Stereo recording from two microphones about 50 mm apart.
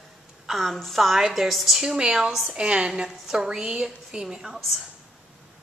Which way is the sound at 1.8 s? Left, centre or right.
Centre.